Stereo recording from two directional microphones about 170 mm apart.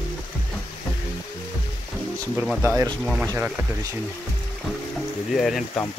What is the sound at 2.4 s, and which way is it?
Speech, 10° right (ahead or behind).